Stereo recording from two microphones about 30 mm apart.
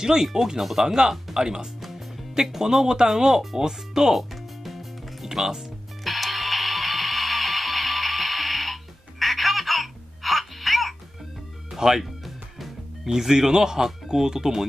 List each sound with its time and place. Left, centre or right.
0.0 s speech: centre
1.8 s music: centre
2.3 s speech: centre
4.1 s music: centre
5.3 s speech: centre
6.0 s music: centre
11.7 s music: centre
13.0 s speech: centre